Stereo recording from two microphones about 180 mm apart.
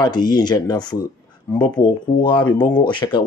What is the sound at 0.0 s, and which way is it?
Speech, 25° left (ahead or behind).